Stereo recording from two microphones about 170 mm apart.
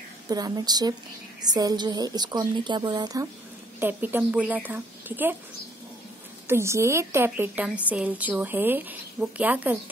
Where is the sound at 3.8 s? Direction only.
10° right (ahead or behind).